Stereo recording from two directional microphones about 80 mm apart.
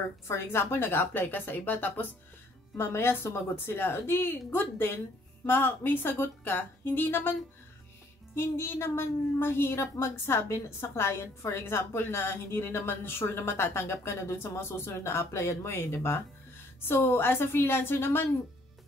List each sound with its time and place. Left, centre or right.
0.3 s a woman's voice: left
8.4 s a woman's voice: left